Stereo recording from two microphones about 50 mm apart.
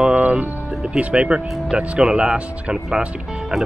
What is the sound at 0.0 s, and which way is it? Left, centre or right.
Speech, right.